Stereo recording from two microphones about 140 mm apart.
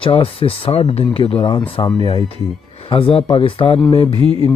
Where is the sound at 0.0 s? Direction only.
40° left (ahead or behind).